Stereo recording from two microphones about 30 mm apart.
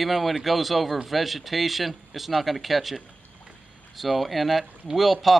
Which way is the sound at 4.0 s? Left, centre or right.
Centre.